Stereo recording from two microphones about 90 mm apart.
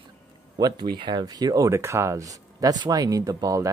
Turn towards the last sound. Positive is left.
turn(degrees=-40)  # may be behind; listen again after turning